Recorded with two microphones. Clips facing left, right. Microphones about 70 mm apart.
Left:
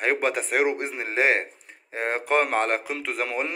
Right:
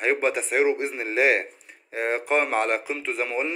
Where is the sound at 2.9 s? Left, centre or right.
Left.